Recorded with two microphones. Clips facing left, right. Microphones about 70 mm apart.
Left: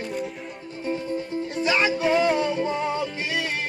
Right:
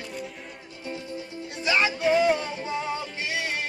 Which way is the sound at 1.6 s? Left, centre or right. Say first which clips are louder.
Left 1 dB; centre.